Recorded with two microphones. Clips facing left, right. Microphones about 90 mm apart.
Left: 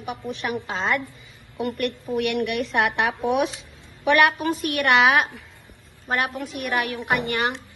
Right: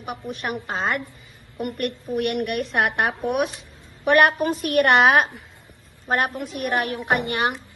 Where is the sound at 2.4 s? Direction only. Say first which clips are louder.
Even; 50° right (ahead or behind).